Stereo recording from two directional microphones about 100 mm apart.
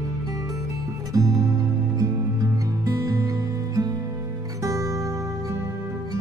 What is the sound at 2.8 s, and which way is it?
Music, 35° right (ahead or behind).